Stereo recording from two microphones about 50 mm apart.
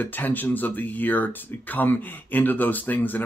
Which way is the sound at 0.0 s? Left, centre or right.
Left.